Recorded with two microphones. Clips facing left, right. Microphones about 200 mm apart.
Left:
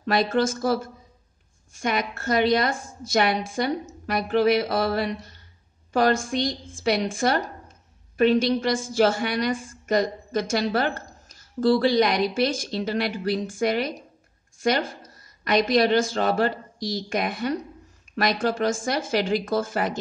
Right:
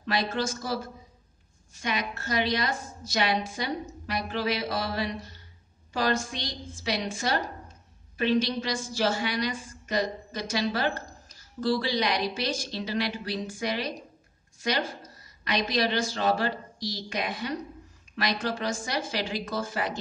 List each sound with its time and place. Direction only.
0.0 s a woman's voice: 50° left (ahead or behind)